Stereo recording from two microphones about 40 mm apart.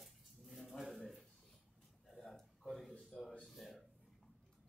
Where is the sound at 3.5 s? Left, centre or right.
Centre.